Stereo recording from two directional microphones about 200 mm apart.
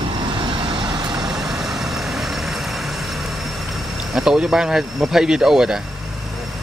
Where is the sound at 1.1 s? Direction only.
5° right (ahead or behind).